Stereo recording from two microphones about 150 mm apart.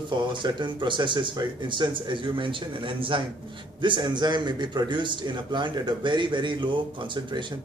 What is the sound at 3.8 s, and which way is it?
A man's voice, 30° right (ahead or behind).